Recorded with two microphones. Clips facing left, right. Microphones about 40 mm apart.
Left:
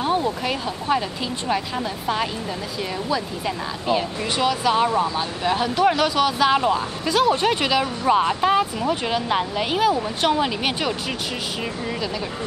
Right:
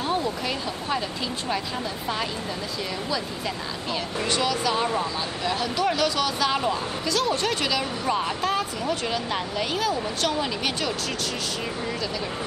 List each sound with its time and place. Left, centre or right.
0.0 s speech: centre
3.1 s speech: centre